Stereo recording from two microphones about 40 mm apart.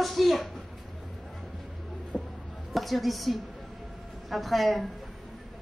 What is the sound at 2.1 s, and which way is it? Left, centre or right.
Music, centre.